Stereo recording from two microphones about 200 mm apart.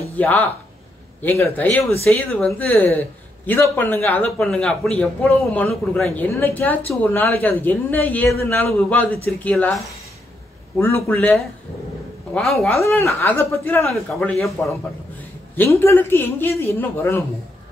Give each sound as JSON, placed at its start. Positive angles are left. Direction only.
{"t": 0.2, "sound": "speech", "side_deg": 10}
{"t": 11.1, "sound": "speech", "side_deg": 10}
{"t": 12.8, "sound": "speech", "side_deg": 15}
{"t": 14.1, "sound": "speech", "side_deg": 0}